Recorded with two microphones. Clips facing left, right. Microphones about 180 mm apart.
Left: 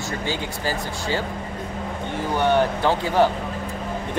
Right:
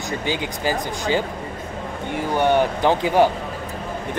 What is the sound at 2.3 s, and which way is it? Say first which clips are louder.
Speech: right 1 dB; 15° right (ahead or behind).